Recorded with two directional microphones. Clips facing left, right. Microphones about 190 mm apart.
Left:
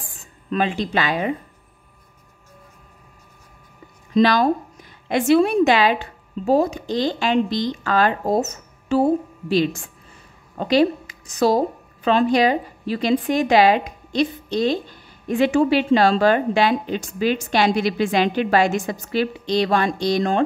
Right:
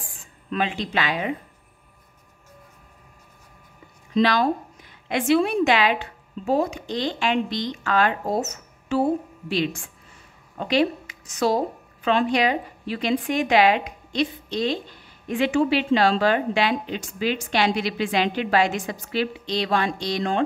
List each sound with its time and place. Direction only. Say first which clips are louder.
0.5 s a woman's voice: left 4 dB; 45° left (ahead or behind)
4.1 s a woman's voice: left 4 dB; 40° left (ahead or behind)